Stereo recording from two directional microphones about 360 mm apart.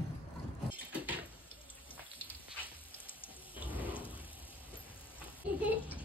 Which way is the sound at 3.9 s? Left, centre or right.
Centre.